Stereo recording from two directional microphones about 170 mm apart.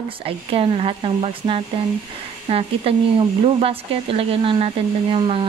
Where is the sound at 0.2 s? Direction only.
35° right (ahead or behind).